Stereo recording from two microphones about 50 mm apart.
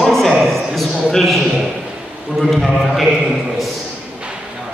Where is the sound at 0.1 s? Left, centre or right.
Centre.